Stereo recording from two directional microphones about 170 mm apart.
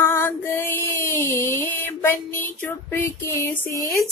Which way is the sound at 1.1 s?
15° left (ahead or behind).